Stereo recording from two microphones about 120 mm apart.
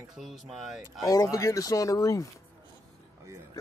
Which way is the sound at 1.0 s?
30° left (ahead or behind).